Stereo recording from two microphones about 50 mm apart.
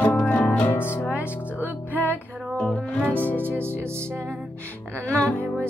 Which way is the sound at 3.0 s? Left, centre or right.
Left.